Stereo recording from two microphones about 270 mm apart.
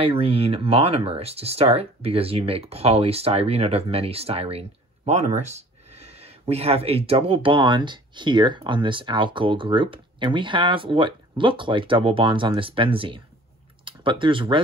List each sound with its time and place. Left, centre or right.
0.0 s speech: right